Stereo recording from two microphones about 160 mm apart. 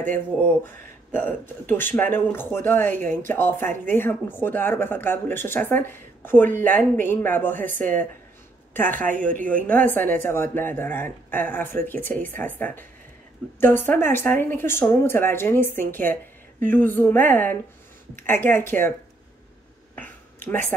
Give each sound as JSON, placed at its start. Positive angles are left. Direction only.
{"t": 0.7, "sound": "speech", "side_deg": 15}
{"t": 9.1, "sound": "speech", "side_deg": -55}
{"t": 9.5, "sound": "speech", "side_deg": 10}
{"t": 20.4, "sound": "speech", "side_deg": 10}